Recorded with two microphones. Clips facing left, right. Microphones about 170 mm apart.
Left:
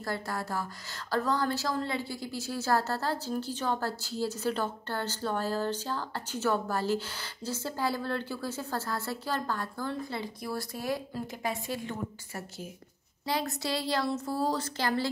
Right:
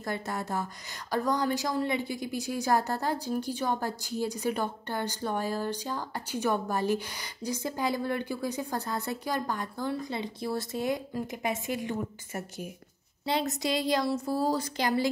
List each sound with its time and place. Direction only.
0.0 s a woman's voice: 20° right (ahead or behind)
13.2 s a woman's voice: 25° right (ahead or behind)